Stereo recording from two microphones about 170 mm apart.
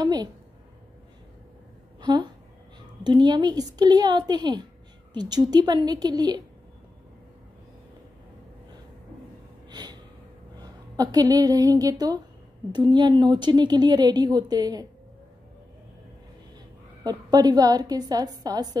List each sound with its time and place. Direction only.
0.0 s a sound: 25° right (ahead or behind)
2.0 s a sound: 25° right (ahead or behind)
3.0 s speech: 25° right (ahead or behind)
9.7 s gasp: 25° right (ahead or behind)
10.6 s a woman's voice: 20° right (ahead or behind)
17.0 s speech: 25° right (ahead or behind)